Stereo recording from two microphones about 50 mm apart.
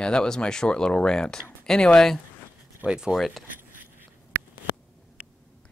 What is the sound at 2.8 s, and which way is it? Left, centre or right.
Speech, centre.